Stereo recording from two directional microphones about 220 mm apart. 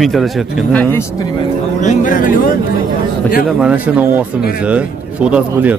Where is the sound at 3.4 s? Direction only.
5° right (ahead or behind).